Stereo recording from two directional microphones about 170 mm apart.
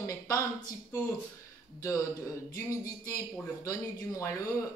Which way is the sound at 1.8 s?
20° left (ahead or behind).